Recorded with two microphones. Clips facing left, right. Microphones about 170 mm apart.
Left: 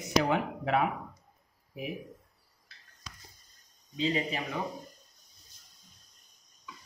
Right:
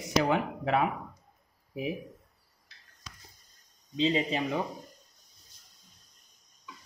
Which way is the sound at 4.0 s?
25° right (ahead or behind).